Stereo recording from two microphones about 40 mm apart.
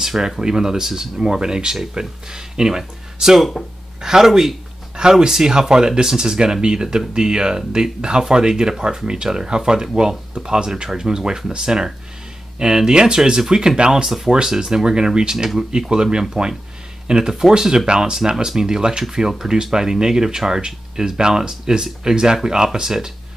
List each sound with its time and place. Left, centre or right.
0.0 s speech: centre
14.0 s speech: centre